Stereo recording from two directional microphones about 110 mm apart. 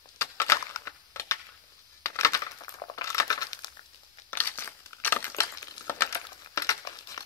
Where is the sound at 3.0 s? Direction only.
30° left (ahead or behind).